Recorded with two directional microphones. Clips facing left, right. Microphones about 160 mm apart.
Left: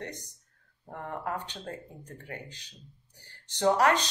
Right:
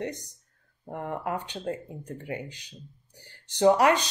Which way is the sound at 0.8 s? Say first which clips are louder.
Right 4 dB; 20° right (ahead or behind).